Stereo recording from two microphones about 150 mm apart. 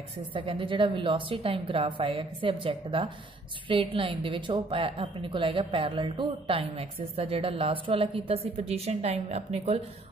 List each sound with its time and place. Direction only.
0.3 s a woman's voice: 35° right (ahead or behind)